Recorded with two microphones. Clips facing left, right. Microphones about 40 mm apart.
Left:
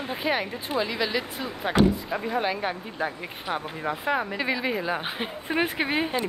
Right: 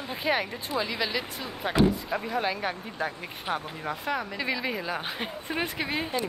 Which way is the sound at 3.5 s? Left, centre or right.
Right.